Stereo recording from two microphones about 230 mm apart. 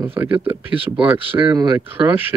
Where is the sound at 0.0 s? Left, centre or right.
Centre.